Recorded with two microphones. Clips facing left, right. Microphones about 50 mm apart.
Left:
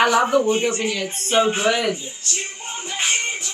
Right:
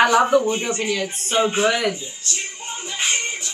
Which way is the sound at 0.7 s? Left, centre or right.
Right.